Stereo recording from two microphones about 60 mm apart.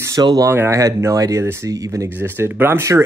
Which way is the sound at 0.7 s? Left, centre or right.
Right.